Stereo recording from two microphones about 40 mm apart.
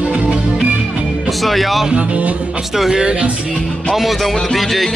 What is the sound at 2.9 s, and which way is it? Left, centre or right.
Speech, right.